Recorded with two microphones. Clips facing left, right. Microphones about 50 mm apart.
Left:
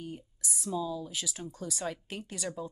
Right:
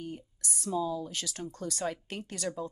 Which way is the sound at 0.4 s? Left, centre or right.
Centre.